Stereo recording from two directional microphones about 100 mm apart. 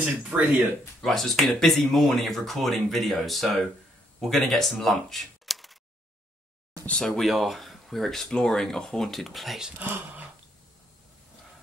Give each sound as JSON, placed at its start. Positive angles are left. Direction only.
{"t": 0.2, "sound": "speech", "side_deg": -20}
{"t": 1.0, "sound": "speech", "side_deg": 5}
{"t": 6.9, "sound": "speech", "side_deg": 5}
{"t": 9.8, "sound": "speech", "side_deg": -20}